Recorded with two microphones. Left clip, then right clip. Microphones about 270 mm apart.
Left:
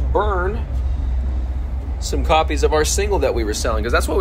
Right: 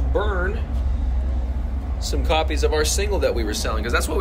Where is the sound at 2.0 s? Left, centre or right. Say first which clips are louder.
Left 5 dB; left.